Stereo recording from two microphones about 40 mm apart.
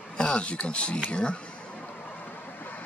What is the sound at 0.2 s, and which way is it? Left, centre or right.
Speech, left.